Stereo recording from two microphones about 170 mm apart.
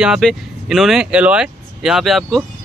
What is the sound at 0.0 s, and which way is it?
Speech, centre (ahead or behind).